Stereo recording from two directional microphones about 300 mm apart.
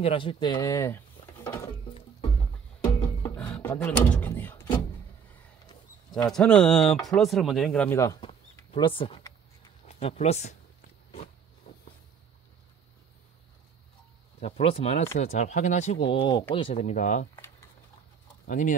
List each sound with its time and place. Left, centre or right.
0.0 s speech: centre
3.3 s speech: centre
6.2 s speech: centre; by 10.5 s left
14.4 s speech: centre
18.5 s speech: left